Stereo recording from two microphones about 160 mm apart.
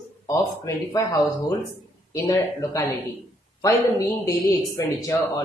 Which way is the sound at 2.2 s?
20° left (ahead or behind).